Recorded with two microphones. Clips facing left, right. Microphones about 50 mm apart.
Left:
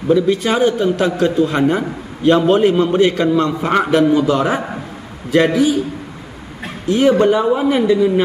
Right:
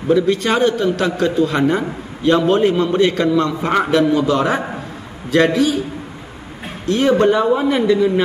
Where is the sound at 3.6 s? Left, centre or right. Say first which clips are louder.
Left 1 dB; centre.